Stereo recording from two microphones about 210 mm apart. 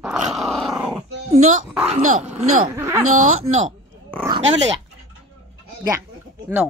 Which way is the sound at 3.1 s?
35° right (ahead or behind).